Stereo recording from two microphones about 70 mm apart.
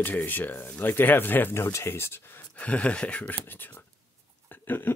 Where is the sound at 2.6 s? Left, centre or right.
Centre.